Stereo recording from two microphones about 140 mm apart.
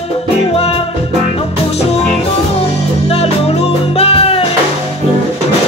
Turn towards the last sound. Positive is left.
turn(degrees=45)  # may be behind; listen again after turning